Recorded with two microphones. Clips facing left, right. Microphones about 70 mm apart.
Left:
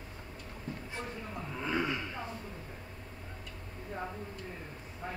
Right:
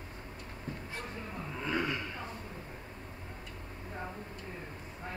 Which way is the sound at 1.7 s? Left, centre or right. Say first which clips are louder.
Even; centre.